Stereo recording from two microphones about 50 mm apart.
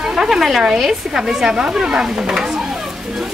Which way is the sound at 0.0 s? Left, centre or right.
Centre.